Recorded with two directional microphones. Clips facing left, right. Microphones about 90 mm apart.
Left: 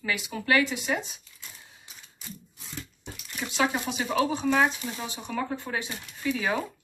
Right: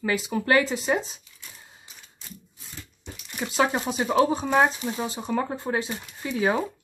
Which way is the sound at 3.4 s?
35° right (ahead or behind).